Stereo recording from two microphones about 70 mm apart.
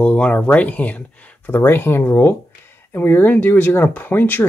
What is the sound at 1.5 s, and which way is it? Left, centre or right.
Speech, left.